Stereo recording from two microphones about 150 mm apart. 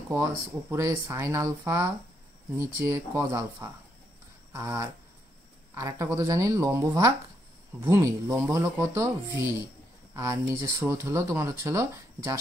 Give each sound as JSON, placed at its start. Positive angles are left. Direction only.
{"t": 0.1, "sound": "speech", "side_deg": -20}
{"t": 4.5, "sound": "a sound", "side_deg": -20}
{"t": 5.8, "sound": "speech", "side_deg": -20}